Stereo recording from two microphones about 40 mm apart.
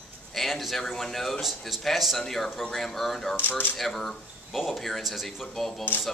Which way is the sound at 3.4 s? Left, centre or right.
Left.